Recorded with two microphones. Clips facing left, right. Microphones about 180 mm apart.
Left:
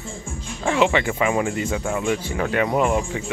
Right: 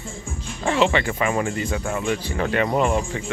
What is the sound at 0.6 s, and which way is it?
Speech, 10° left (ahead or behind).